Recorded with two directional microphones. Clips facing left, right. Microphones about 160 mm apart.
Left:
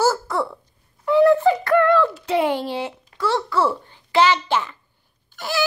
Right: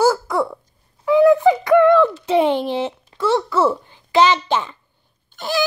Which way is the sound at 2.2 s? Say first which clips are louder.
Right 4 dB; 20° right (ahead or behind).